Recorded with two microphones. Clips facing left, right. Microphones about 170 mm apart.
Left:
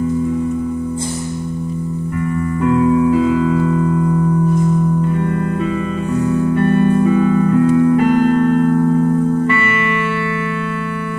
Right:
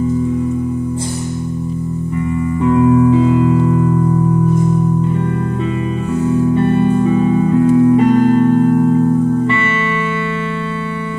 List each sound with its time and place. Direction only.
6.5 s music: 25° right (ahead or behind)